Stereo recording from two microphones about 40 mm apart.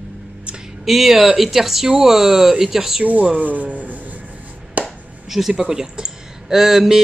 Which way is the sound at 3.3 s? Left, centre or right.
Right.